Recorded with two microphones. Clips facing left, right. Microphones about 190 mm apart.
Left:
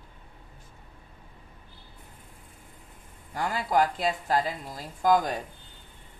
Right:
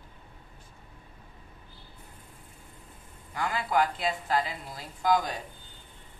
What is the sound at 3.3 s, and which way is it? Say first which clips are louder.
Speech: left 2 dB; 40° left (ahead or behind).